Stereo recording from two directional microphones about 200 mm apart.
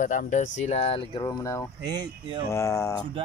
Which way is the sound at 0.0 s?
40° left (ahead or behind).